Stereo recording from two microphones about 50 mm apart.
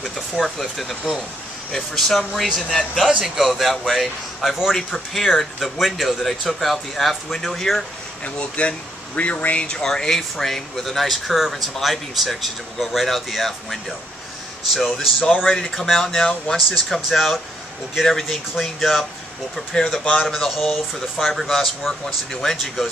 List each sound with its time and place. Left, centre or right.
0.0 s speech: centre
8.4 s speech: left
9.8 s speech: centre
15.2 s speech: centre
18.6 s speech: centre
20.2 s speech: centre